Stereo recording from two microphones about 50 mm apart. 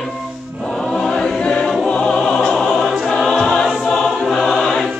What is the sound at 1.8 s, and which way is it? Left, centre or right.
Music, centre.